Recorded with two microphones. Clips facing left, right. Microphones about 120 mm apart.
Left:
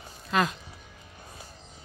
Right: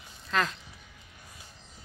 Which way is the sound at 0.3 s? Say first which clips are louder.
Left 3 dB; 10° left (ahead or behind).